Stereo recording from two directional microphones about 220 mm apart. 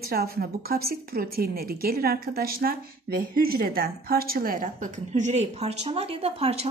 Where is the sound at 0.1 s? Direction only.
45° right (ahead or behind).